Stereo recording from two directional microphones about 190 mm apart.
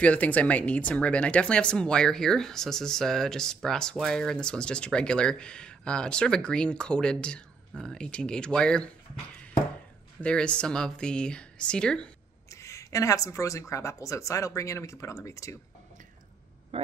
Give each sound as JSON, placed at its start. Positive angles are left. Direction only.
{"t": 0.0, "sound": "speech", "side_deg": 5}
{"t": 10.2, "sound": "speech", "side_deg": 5}
{"t": 12.4, "sound": "speech", "side_deg": 15}
{"t": 16.7, "sound": "speech", "side_deg": -30}